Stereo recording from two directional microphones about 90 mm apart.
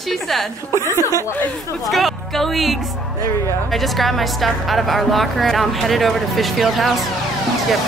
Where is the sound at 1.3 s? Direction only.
30° left (ahead or behind).